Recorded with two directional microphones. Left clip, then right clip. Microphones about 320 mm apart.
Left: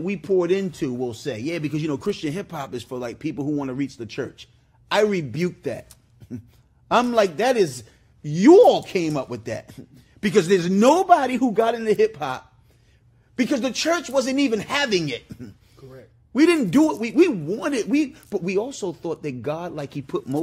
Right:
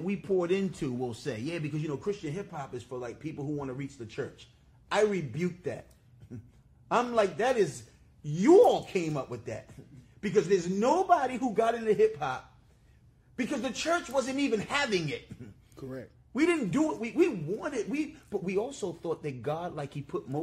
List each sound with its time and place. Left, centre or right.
0.0 s speech: left
1.7 s speech: left
6.9 s speech: left
13.4 s speech: left
15.8 s a sound: right
16.3 s speech: left